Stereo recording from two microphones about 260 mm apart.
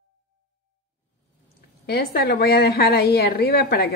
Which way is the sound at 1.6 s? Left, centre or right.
Left.